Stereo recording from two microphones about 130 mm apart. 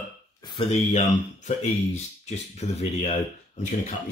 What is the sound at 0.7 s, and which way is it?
Speech, 60° left (ahead or behind).